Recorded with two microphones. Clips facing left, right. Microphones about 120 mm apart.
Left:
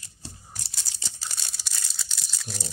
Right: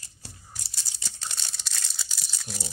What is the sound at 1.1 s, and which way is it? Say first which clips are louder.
Crumpling: right 2 dB; 5° left (ahead or behind).